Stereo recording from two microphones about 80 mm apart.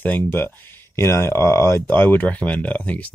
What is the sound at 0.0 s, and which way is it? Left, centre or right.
Speech, left.